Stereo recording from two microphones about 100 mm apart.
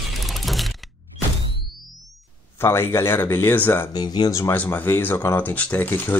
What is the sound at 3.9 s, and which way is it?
Speech, 45° left (ahead or behind).